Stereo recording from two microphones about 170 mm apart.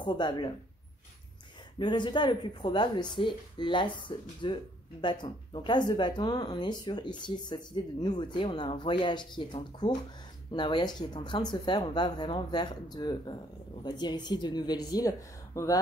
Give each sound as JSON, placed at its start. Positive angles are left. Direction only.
{"t": 0.0, "sound": "speech", "side_deg": 25}
{"t": 1.8, "sound": "speech", "side_deg": 25}